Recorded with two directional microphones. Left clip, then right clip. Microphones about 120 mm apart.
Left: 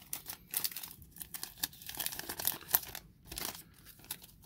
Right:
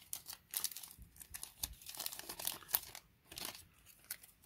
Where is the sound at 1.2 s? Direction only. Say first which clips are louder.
Left 7 dB; 15° right (ahead or behind).